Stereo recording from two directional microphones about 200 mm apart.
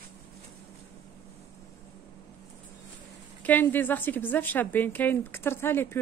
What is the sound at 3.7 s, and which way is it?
Speech, 10° left (ahead or behind).